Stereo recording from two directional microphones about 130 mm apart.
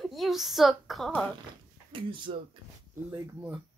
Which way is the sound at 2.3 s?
45° right (ahead or behind).